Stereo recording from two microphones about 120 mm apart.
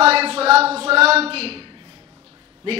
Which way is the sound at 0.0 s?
55° right (ahead or behind).